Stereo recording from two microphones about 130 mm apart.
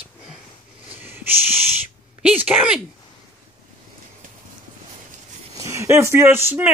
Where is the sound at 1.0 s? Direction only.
15° right (ahead or behind).